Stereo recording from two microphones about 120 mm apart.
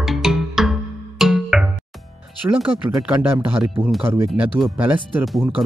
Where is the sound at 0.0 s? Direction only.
5° right (ahead or behind).